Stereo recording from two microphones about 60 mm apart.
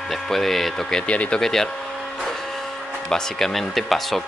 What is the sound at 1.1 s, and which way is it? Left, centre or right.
Speech, left.